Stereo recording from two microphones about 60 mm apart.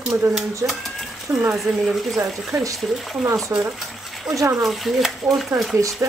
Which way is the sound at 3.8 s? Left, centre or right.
Centre.